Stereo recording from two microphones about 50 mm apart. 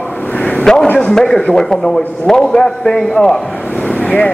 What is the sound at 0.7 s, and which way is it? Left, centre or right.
Speech, centre.